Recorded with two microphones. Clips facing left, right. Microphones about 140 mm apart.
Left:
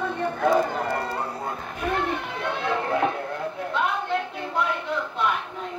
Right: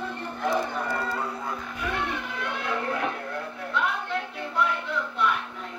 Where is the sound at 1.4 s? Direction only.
45° left (ahead or behind).